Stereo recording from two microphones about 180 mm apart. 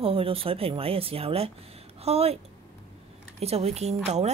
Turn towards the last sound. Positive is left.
turn(degrees=-40)  # may be behind; listen again after turning